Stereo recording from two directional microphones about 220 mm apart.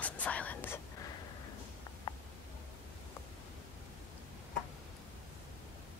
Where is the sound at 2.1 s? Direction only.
20° left (ahead or behind).